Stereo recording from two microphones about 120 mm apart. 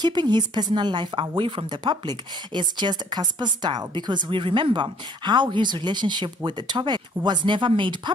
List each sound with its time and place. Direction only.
0.0 s a woman's voice: 40° right (ahead or behind)